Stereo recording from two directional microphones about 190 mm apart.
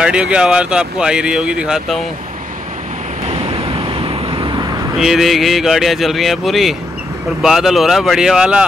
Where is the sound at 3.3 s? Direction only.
30° right (ahead or behind).